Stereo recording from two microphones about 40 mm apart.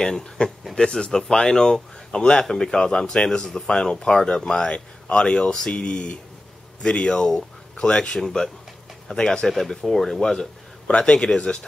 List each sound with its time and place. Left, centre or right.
0.0 s speech: centre
9.5 s speech: centre
10.9 s speech: left